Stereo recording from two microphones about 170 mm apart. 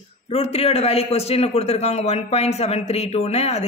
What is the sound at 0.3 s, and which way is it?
Speech, 35° left (ahead or behind).